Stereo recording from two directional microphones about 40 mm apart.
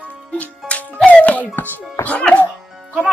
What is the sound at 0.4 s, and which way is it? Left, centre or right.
Music, left.